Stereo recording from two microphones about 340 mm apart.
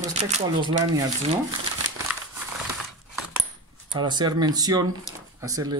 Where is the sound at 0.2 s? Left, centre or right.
Centre.